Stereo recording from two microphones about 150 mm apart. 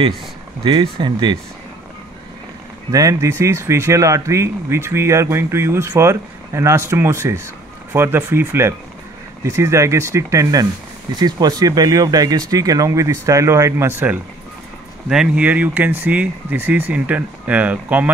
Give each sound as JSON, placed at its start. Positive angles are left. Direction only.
{"t": 0.7, "sound": "speech", "side_deg": -35}
{"t": 2.9, "sound": "speech", "side_deg": -25}